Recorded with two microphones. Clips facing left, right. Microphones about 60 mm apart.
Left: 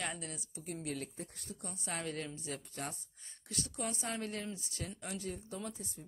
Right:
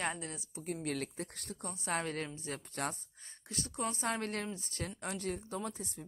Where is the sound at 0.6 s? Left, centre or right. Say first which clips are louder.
Right 4 dB; right.